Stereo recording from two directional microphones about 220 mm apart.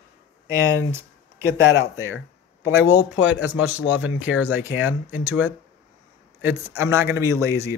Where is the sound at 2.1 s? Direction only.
50° left (ahead or behind).